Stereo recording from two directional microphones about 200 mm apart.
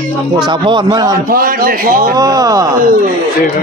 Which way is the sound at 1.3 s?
45° right (ahead or behind).